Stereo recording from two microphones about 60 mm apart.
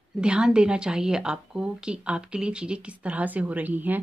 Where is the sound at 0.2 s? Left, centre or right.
Centre.